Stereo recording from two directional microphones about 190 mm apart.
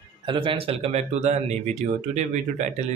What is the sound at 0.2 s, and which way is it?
Speech, 25° right (ahead or behind).